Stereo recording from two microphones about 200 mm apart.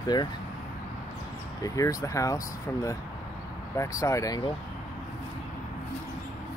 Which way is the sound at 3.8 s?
15° left (ahead or behind).